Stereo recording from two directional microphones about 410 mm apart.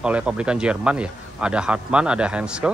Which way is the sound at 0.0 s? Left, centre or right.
Centre.